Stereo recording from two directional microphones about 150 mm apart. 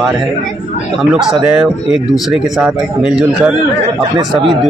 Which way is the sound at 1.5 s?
5° right (ahead or behind).